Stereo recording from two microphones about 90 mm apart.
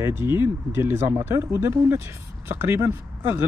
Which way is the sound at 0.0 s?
25° right (ahead or behind).